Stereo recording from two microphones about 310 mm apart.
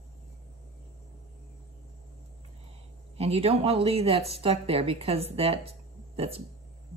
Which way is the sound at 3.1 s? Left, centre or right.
Centre.